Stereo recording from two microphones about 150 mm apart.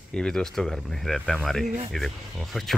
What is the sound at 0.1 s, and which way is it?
Speech, 5° left (ahead or behind).